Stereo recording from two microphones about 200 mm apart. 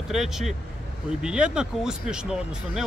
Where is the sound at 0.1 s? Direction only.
Centre (ahead or behind).